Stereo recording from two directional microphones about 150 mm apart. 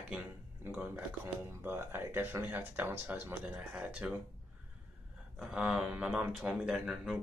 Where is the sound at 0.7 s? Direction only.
10° right (ahead or behind).